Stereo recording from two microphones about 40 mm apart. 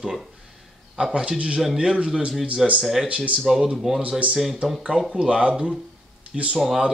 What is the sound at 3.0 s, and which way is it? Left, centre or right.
Speech, right.